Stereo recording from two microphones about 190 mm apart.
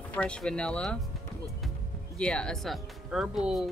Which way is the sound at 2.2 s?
5° left (ahead or behind).